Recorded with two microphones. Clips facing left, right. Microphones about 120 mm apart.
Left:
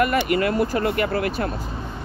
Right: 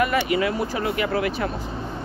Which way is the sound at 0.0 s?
50° left (ahead or behind).